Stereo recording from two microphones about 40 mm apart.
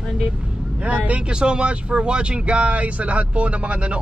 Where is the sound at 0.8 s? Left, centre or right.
Right.